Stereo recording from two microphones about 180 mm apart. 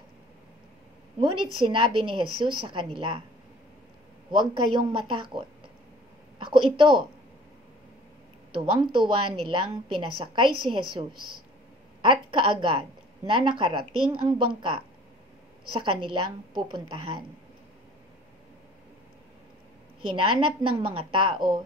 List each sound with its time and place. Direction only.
1.2 s a woman's voice: 25° right (ahead or behind)
4.3 s a woman's voice: 25° right (ahead or behind)
8.5 s a woman's voice: 25° right (ahead or behind)
20.2 s a woman's voice: 30° right (ahead or behind)